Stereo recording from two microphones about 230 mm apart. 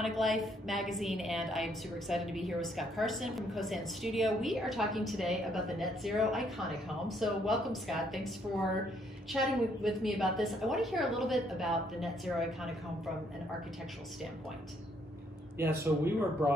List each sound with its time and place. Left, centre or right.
0.0 s a woman's voice: centre
9.3 s a woman's voice: centre
15.6 s speech: centre